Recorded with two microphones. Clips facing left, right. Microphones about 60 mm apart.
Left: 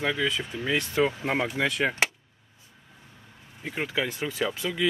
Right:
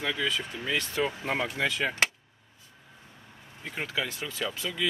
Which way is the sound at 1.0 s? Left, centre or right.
Centre.